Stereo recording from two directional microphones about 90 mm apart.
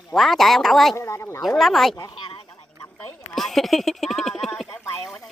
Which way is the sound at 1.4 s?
Centre (ahead or behind).